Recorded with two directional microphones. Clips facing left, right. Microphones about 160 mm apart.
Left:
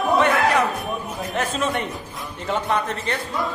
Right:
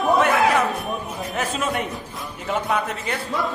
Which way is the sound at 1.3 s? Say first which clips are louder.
Left 1 dB; 5° right (ahead or behind).